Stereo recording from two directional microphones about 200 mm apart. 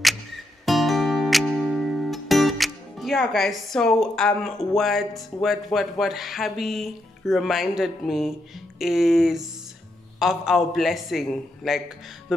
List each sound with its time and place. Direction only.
0.7 s music: centre (ahead or behind)
8.7 s a man's voice: centre (ahead or behind)